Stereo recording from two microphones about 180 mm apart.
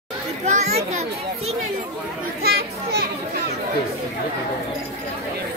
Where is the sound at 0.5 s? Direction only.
40° right (ahead or behind).